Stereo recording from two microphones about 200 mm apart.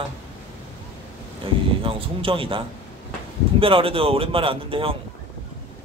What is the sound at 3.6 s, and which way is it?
A man's voice, 25° right (ahead or behind).